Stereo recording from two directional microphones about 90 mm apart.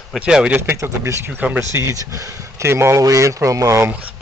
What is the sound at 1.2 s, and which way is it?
Speech, 20° right (ahead or behind).